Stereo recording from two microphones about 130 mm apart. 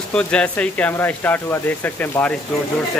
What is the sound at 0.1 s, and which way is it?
Speech, 10° left (ahead or behind).